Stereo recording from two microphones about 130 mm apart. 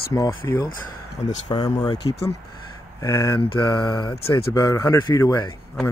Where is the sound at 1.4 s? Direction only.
30° left (ahead or behind).